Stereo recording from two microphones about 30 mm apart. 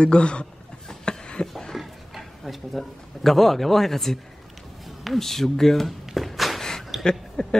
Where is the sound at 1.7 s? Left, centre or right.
Centre.